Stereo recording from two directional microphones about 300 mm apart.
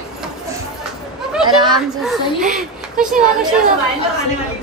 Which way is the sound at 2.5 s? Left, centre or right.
Centre.